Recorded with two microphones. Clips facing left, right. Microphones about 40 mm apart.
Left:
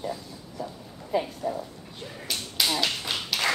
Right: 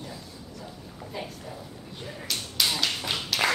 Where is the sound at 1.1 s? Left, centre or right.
Centre.